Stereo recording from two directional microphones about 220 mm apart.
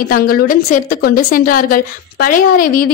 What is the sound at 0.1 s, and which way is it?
A woman's voice, 40° left (ahead or behind).